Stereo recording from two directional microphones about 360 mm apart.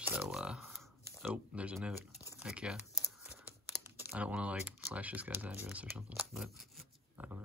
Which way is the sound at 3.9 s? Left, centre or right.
Centre.